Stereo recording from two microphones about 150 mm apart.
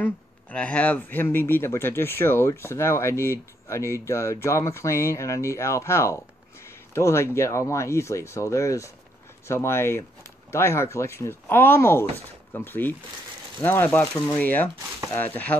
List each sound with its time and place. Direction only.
0.0 s speech: 10° left (ahead or behind)